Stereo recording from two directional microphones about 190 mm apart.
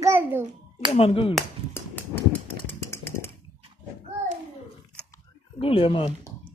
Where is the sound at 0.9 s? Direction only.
30° left (ahead or behind).